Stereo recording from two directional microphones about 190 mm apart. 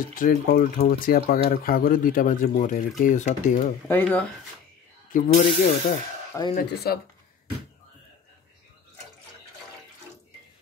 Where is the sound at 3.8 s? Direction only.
10° left (ahead or behind).